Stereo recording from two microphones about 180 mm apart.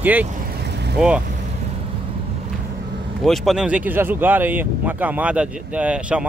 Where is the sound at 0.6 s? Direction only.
70° right (ahead or behind).